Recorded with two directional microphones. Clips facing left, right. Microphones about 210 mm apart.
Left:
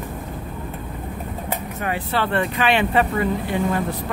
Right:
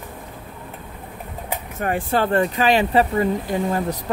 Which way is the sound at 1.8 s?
50° right (ahead or behind).